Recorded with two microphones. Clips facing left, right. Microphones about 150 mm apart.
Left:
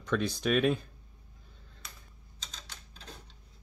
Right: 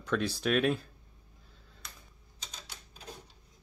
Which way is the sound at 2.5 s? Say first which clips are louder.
Even; 15° right (ahead or behind).